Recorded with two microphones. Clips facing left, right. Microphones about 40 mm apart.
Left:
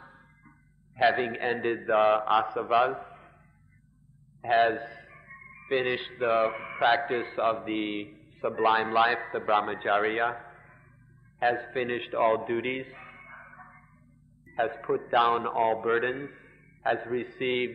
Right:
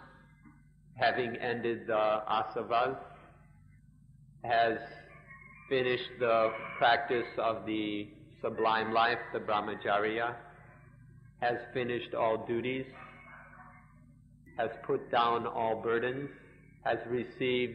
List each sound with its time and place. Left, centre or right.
1.0 s a man's voice: left
4.4 s a sound: left
5.7 s a man's voice: centre
10.1 s a sound: centre
11.5 s a man's voice: left
12.7 s dog: left
14.5 s a man's voice: left
14.8 s a man's voice: centre
15.0 s a man's voice: centre
16.3 s a man's voice: centre